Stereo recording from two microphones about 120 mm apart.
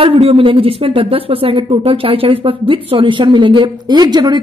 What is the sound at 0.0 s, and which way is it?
Speech, 55° right (ahead or behind).